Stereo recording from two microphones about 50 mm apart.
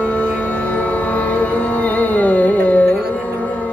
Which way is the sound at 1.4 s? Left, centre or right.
Left.